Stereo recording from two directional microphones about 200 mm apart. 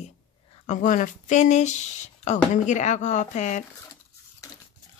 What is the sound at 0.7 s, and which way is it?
Speech, 40° left (ahead or behind).